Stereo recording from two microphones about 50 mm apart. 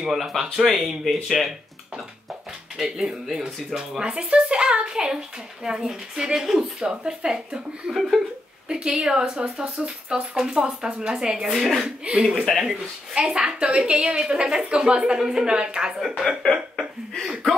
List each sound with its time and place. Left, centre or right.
0.0 s a woman's voice: centre
2.8 s speech: centre
4.0 s a woman's voice: right
7.9 s speech: centre
8.6 s a woman's voice: centre
12.1 s a woman's voice: centre